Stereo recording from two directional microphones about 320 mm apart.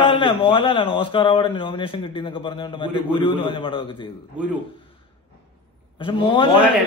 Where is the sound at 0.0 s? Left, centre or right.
Centre.